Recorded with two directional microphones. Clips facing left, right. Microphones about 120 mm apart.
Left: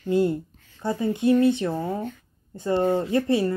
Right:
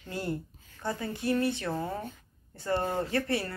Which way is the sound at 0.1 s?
20° left (ahead or behind).